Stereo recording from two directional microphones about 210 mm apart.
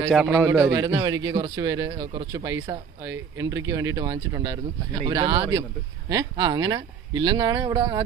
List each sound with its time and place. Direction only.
0.1 s a man's voice: 5° right (ahead or behind)